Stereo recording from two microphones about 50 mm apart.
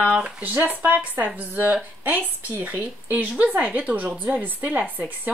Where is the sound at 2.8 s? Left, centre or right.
Right.